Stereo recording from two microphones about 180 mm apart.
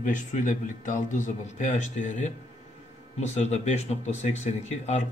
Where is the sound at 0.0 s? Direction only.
45° left (ahead or behind).